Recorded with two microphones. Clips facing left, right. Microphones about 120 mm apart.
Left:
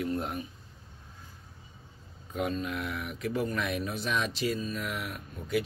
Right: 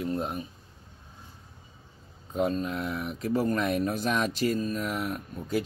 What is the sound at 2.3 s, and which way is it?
Speech, 35° right (ahead or behind).